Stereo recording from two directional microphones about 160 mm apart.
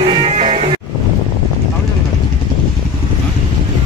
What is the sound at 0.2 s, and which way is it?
Music, 40° right (ahead or behind).